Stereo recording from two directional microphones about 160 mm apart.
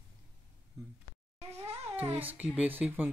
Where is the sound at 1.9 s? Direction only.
10° right (ahead or behind).